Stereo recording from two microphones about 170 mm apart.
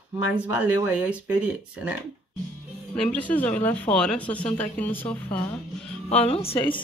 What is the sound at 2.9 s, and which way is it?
Speech, 5° left (ahead or behind).